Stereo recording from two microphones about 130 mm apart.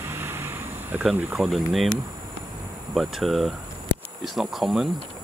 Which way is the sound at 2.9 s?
Centre (ahead or behind).